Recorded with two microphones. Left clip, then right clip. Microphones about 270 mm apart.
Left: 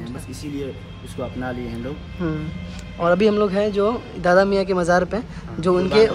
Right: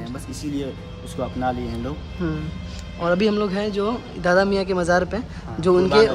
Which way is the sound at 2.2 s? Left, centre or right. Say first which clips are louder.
Left 2 dB; centre.